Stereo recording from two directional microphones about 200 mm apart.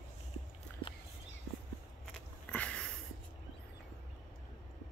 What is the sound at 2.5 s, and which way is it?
Sniff, 5° left (ahead or behind).